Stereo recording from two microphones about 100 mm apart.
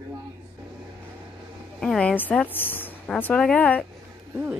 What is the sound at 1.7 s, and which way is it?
A woman's voice, 10° left (ahead or behind).